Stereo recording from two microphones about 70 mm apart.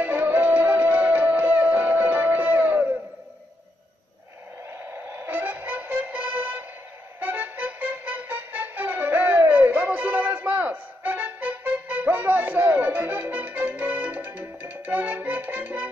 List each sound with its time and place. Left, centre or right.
0.0 s music: right
5.1 s music: right